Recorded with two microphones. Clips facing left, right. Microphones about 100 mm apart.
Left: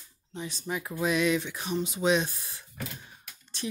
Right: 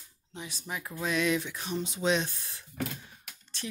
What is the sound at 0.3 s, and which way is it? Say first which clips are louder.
Speech: left 5 dB; 5° right (ahead or behind).